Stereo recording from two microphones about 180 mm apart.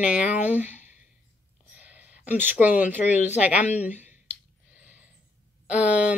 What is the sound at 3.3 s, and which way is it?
Speech, 5° right (ahead or behind).